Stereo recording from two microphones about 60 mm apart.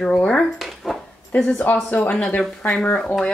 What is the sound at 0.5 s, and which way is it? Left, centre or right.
Speech, centre.